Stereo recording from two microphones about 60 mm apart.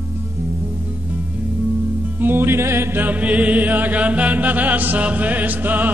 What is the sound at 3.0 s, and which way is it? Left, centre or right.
Chant, right.